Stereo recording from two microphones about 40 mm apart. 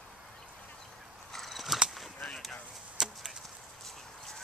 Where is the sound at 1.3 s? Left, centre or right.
Centre.